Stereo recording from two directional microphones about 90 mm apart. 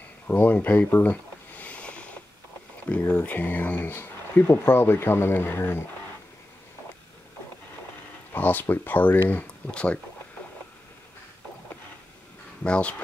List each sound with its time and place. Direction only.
0.3 s a sound: 20° left (ahead or behind)
2.9 s speech: 20° left (ahead or behind)
8.3 s speech: 20° left (ahead or behind)
12.6 s speech: 15° left (ahead or behind)